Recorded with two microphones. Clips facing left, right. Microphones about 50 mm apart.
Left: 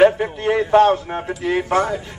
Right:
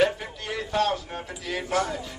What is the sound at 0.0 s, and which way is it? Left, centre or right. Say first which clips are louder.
A man's voice: left 10 dB; left.